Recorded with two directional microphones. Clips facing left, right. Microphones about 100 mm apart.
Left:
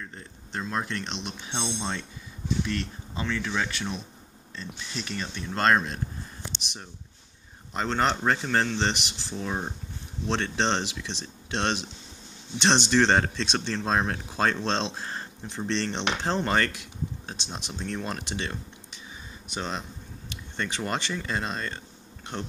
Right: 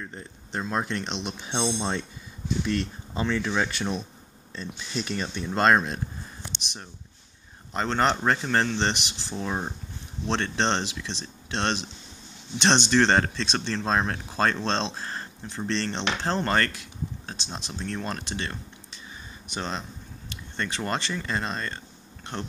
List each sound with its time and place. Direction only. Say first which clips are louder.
0.0 s speech: right 3 dB; 20° right (ahead or behind)
1.0 s a man's voice: right 3 dB; 5° right (ahead or behind)
1.6 s speech: right 5 dB; 20° right (ahead or behind)
3.2 s speech: right 3 dB; 20° right (ahead or behind)
5.5 s speech: right 2 dB; 15° right (ahead or behind)
6.6 s a man's voice: right 1 dB; 5° left (ahead or behind)
10.2 s speech: right 1 dB; 5° left (ahead or behind)
19.5 s a man's voice: right 1 dB; 5° left (ahead or behind)